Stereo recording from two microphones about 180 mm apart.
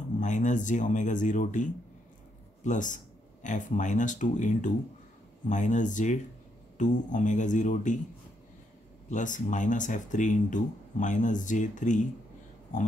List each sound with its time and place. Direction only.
0.2 s speech: 45° left (ahead or behind)
9.1 s speech: 45° left (ahead or behind)